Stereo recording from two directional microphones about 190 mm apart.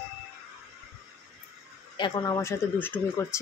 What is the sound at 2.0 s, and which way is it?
Speech, 25° left (ahead or behind).